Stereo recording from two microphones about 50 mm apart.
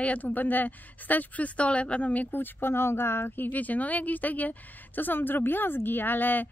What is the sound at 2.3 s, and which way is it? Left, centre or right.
Speech, left.